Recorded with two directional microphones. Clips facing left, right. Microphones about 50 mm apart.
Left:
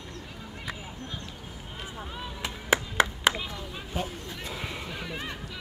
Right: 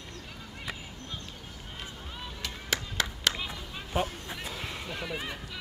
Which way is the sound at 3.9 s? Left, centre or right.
Right.